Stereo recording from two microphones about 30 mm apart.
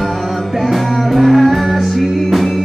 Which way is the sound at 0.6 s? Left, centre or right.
Centre.